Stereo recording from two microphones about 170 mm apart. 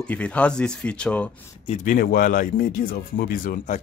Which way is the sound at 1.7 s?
50° left (ahead or behind).